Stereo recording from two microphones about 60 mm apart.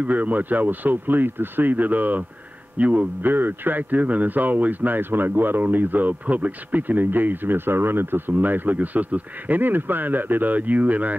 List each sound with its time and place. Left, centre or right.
0.0 s a man's voice: right